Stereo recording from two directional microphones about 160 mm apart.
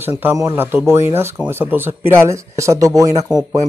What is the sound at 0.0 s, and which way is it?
A man's voice, 10° right (ahead or behind).